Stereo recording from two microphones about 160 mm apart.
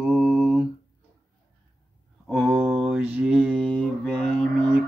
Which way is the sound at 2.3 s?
Centre (ahead or behind).